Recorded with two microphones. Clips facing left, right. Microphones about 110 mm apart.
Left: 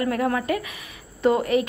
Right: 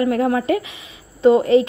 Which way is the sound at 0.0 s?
25° right (ahead or behind).